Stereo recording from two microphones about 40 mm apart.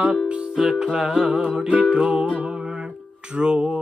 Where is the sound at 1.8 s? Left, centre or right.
Right.